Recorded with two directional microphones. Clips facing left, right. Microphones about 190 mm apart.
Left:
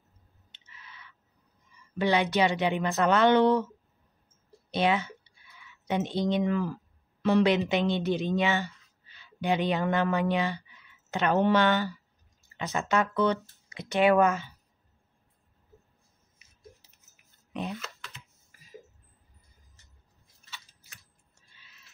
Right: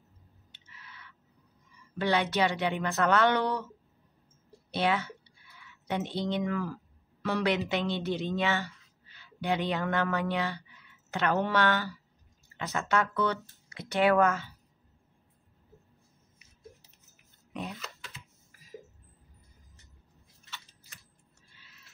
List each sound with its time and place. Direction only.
0.5 s a sound: 20° left (ahead or behind)
2.0 s speech: 20° left (ahead or behind)
4.6 s a woman's voice: 20° left (ahead or behind)